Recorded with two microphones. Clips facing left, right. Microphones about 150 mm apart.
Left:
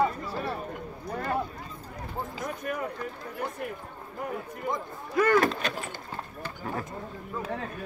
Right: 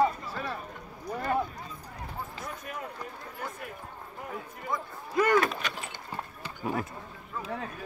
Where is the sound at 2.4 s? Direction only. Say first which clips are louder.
Left 6 dB; 60° left (ahead or behind).